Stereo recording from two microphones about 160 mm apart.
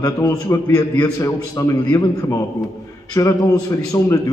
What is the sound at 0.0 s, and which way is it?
A man's voice, 25° left (ahead or behind).